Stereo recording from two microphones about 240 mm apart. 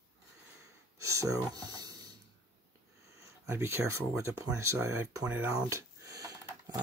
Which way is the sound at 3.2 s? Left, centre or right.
Centre.